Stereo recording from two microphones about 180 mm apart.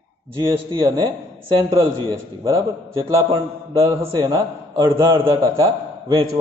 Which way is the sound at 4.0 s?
25° right (ahead or behind).